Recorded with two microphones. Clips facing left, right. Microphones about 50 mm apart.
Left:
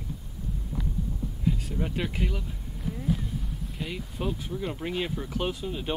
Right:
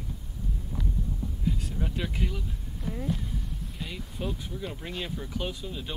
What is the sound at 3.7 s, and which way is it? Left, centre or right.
Speech, centre.